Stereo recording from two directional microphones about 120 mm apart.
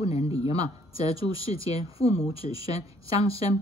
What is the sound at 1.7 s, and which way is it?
Speech, 55° left (ahead or behind).